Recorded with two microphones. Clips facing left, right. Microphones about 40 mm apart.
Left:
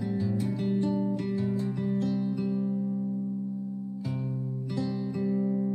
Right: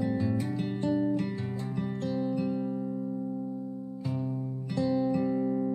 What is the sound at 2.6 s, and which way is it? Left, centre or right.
Music, right.